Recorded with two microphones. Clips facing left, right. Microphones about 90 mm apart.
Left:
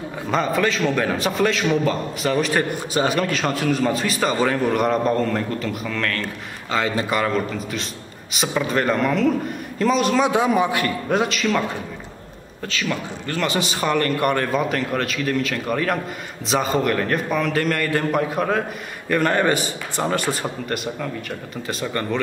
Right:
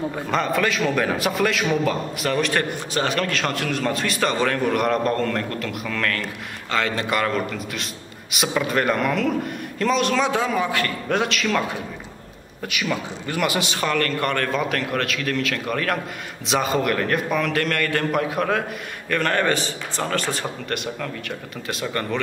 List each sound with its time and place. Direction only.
0.3 s a man's voice: centre (ahead or behind)
12.6 s a man's voice: 10° right (ahead or behind)
13.8 s a man's voice: 15° left (ahead or behind)
14.5 s a man's voice: centre (ahead or behind)
19.0 s a man's voice: 10° left (ahead or behind)
20.2 s a man's voice: 5° left (ahead or behind)